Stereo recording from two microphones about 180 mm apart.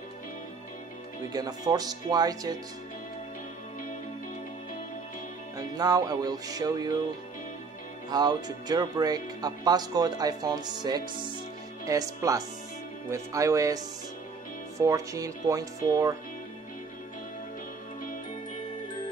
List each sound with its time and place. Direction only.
1.3 s speech: 20° right (ahead or behind)
5.6 s speech: 20° right (ahead or behind)
8.1 s speech: 20° right (ahead or behind)